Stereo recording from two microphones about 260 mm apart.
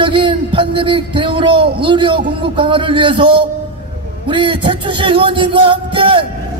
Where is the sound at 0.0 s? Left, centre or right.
Centre.